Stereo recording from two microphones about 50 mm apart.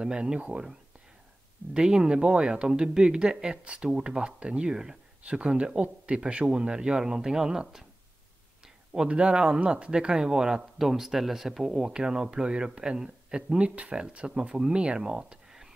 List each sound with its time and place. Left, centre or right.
0.0 s a man's voice: centre
8.9 s a man's voice: centre
11.9 s a man's voice: centre